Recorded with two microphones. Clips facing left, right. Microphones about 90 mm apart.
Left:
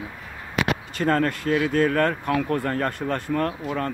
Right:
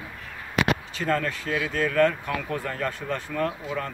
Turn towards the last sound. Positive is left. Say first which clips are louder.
# left 2 dB
turn(degrees=50)  # may be behind; listen again after turning